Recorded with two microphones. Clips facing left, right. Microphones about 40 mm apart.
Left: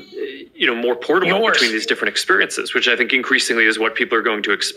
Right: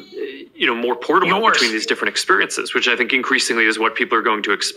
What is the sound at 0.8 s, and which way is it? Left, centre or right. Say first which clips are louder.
Speech: right 1 dB; left.